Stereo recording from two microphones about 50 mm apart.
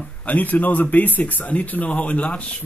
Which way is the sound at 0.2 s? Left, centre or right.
Left.